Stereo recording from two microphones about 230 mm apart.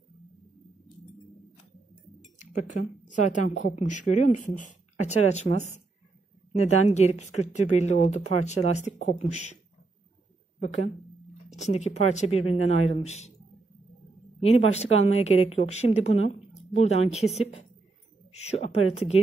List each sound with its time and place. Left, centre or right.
2.3 s chink: left
3.1 s a woman's voice: left
6.5 s speech: left
11.5 s speech: left
14.4 s speech: left
18.3 s speech: left